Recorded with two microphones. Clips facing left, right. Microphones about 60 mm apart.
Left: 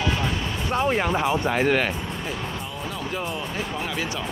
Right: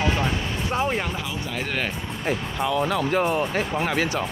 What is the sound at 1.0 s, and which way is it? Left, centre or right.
Speech, left.